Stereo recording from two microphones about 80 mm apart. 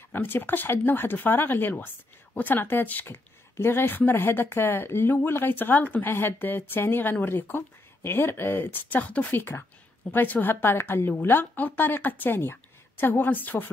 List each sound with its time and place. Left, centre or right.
0.1 s speech: left